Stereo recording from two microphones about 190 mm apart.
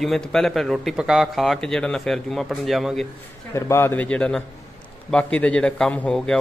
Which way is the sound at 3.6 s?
15° left (ahead or behind).